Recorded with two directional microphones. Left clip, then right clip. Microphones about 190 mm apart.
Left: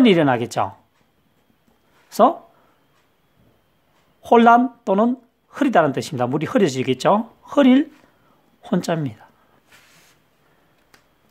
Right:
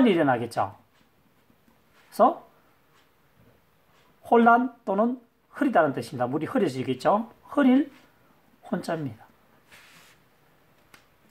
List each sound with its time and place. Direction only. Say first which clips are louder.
0.0 s speech: left 6 dB; 50° left (ahead or behind)
4.2 s speech: left 6 dB; 50° left (ahead or behind)